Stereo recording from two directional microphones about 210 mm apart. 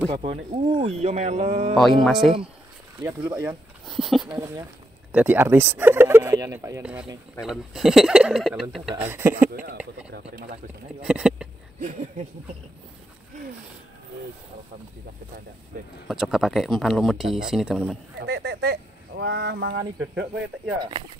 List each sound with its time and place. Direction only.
0.1 s speech: 30° right (ahead or behind)
1.7 s speech: centre (ahead or behind)
3.0 s speech: 10° right (ahead or behind)
10.1 s speech: 45° right (ahead or behind)
11.0 s speech: 5° right (ahead or behind)
11.8 s speech: 35° right (ahead or behind)
15.7 s speech: 40° right (ahead or behind)
16.1 s speech: centre (ahead or behind)
18.2 s speech: 50° right (ahead or behind)